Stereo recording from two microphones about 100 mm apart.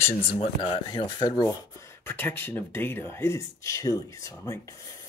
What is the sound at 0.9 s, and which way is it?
Speech, 50° left (ahead or behind).